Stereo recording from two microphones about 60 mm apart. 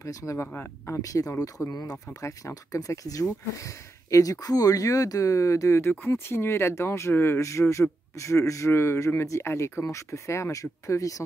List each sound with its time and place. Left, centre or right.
0.0 s speech: left
6.0 s a man's voice: left
7.3 s a man's voice: left
9.8 s speech: left